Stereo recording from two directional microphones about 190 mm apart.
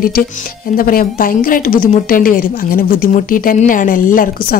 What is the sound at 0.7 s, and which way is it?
A woman's voice, 50° left (ahead or behind).